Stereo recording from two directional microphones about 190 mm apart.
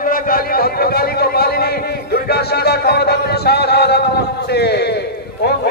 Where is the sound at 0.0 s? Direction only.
50° left (ahead or behind).